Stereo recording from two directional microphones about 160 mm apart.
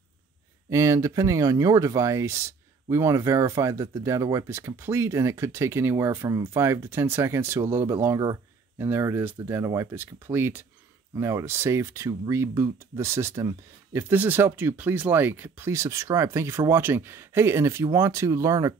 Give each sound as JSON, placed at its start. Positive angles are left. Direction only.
{"t": 0.7, "sound": "speech", "side_deg": -20}